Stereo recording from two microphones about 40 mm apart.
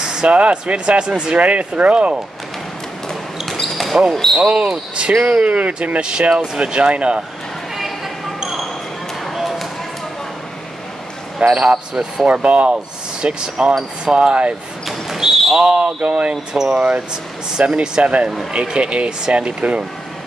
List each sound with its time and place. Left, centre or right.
0.0 s a sound: centre
0.3 s speech: right
1.4 s speech: right
4.1 s speech: centre
4.4 s speech: right
6.6 s speech: right
8.4 s basketball bounce: centre
9.2 s a sound: centre
11.3 s speech: right
14.9 s a sound: centre
15.6 s speech: right